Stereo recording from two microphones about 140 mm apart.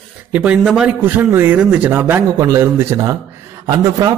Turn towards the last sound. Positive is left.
turn(degrees=-30)  # may be behind; listen again after turning